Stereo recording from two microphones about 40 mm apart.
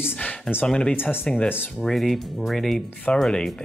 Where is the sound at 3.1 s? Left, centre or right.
Left.